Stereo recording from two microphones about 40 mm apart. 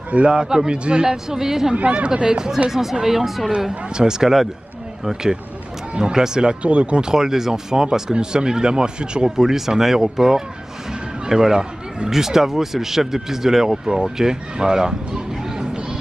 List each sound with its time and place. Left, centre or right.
0.3 s speech: centre
1.8 s speech: right; by 3.5 s centre
3.9 s speech: centre
6.6 s speech: right
7.1 s speech: centre
9.4 s speech: centre